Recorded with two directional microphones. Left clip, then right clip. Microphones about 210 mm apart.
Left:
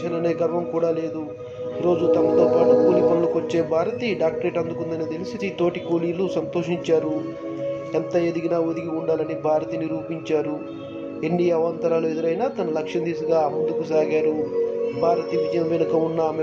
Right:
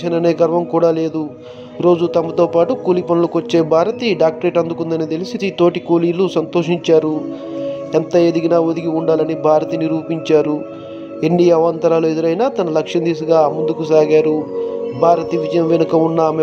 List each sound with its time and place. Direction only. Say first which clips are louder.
0.0 s a man's voice: right 8 dB; 40° right (ahead or behind)